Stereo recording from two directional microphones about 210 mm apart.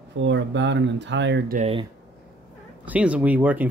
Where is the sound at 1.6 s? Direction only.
25° right (ahead or behind).